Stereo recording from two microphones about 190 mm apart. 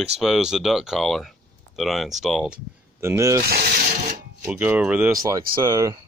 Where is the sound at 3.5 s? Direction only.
55° right (ahead or behind).